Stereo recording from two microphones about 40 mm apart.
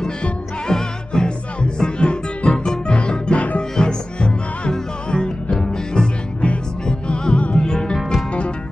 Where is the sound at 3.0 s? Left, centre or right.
Left.